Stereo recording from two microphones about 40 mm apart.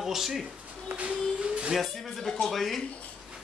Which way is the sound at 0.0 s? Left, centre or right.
Centre.